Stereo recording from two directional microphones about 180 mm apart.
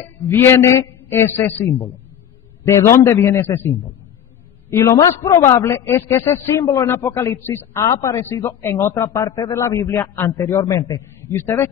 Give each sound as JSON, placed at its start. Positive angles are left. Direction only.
{"t": 0.3, "sound": "a man's voice", "side_deg": 15}